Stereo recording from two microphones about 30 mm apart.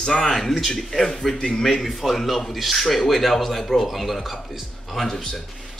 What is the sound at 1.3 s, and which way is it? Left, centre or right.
Speech, left.